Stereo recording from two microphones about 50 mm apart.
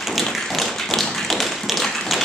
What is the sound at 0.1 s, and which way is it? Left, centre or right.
Tap, centre.